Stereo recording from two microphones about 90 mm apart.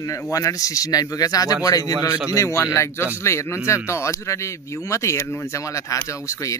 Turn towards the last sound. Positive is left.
turn(degrees=35)  # may be behind; listen again after turning